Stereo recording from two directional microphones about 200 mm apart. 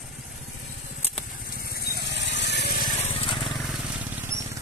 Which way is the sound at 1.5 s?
50° left (ahead or behind).